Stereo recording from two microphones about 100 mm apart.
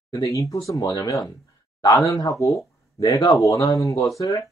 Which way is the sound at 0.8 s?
45° left (ahead or behind).